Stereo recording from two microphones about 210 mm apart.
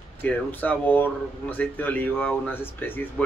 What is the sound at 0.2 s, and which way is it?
Speech, 10° left (ahead or behind).